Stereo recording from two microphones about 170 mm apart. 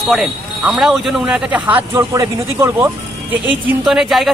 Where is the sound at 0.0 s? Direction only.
Centre (ahead or behind).